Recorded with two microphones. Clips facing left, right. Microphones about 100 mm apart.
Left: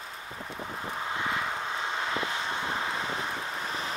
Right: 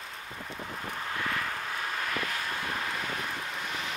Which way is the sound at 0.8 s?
20° left (ahead or behind).